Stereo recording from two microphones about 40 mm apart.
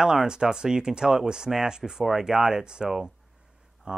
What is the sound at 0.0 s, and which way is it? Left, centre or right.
Speech, centre.